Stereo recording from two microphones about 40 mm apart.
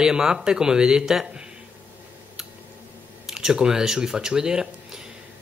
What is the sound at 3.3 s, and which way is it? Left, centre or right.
Speech, centre.